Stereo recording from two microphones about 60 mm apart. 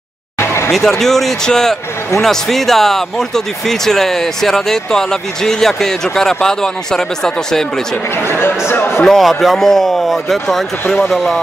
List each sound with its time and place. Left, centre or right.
0.4 s a sound: left
0.7 s speech: centre
8.3 s speech: left
9.0 s speech: centre